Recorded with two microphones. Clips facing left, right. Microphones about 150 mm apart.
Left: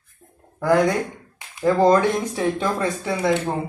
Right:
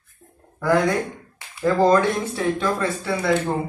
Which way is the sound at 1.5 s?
20° left (ahead or behind).